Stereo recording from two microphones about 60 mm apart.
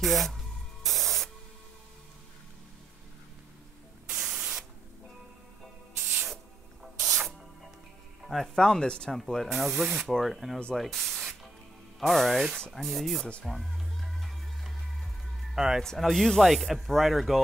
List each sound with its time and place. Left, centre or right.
0.0 s speech: centre
0.8 s spray: centre
5.9 s spray: right
6.8 s spray: centre
8.3 s speech: centre
9.1 s speech: centre
10.8 s spray: centre
12.0 s speech: centre
13.2 s speech: centre
13.5 s music: centre
15.5 s speech: centre
15.8 s speech: centre